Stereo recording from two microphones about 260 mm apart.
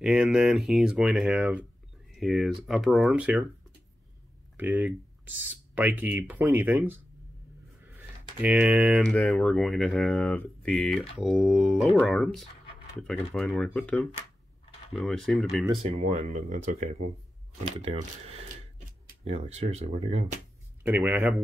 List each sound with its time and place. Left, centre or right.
0.0 s speech: centre
4.6 s speech: centre
8.4 s speech: centre
16.0 s speech: right
20.8 s speech: centre